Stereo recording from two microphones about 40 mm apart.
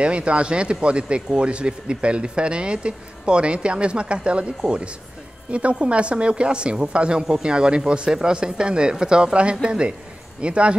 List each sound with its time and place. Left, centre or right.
0.0 s speech: right